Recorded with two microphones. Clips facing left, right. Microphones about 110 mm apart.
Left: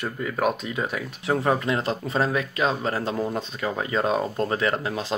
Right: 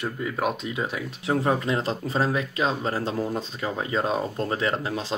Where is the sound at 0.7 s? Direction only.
20° right (ahead or behind).